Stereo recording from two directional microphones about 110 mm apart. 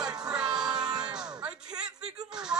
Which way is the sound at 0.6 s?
40° right (ahead or behind).